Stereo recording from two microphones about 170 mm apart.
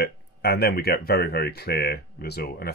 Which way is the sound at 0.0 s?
70° left (ahead or behind).